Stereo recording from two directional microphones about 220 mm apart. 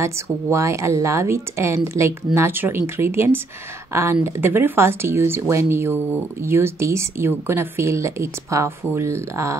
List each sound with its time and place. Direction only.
0.0 s speech: 15° right (ahead or behind)